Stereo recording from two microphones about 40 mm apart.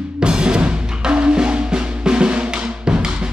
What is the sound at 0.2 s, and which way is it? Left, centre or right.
Music, right.